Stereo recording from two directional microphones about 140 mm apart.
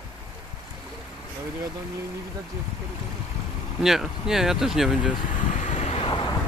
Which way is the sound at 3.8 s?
5° right (ahead or behind).